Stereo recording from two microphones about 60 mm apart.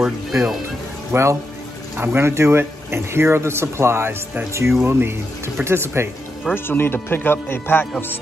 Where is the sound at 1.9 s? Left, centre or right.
Right.